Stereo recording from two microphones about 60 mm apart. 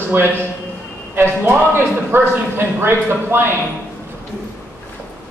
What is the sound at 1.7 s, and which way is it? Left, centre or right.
A man's voice, right.